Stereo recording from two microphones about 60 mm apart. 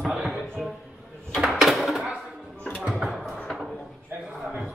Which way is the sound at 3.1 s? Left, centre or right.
Centre.